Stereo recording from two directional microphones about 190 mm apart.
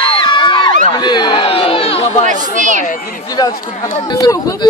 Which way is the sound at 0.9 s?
25° left (ahead or behind).